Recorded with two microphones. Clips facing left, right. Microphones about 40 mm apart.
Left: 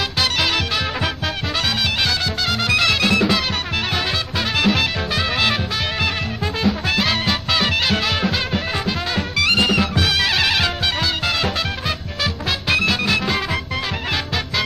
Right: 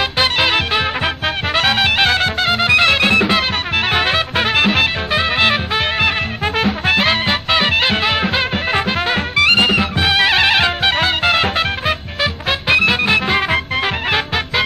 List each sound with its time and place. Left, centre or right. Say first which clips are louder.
0.2 s music: right 4 dB; right
1.6 s music: right 7 dB; right